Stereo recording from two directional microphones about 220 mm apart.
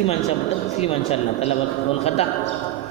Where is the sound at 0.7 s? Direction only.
30° left (ahead or behind).